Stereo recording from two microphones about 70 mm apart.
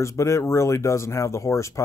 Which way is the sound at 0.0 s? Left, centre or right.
Left.